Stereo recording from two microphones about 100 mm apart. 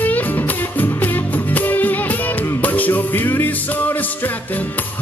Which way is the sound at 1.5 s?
15° left (ahead or behind).